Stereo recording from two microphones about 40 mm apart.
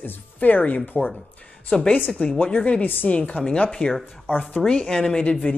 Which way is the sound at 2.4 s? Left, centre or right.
Left.